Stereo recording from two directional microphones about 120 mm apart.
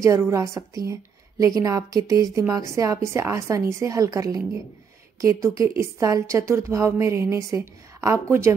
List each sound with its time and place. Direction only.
0.0 s a woman's voice: 25° right (ahead or behind)